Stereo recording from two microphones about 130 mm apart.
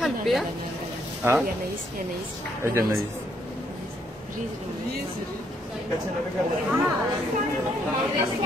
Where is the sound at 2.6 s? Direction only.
20° right (ahead or behind).